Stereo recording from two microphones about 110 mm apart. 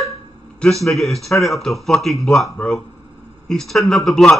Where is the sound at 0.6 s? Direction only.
Centre (ahead or behind).